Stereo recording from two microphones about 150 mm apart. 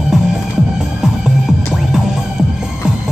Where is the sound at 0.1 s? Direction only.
5° right (ahead or behind).